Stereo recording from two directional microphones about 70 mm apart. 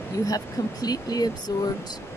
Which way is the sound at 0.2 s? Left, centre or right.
Left.